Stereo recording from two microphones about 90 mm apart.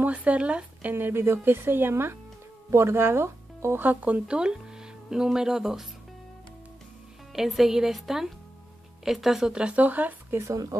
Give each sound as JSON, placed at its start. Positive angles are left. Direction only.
{"t": 0.0, "sound": "speech", "side_deg": -15}
{"t": 7.3, "sound": "a woman's voice", "side_deg": -5}
{"t": 10.4, "sound": "speech", "side_deg": -40}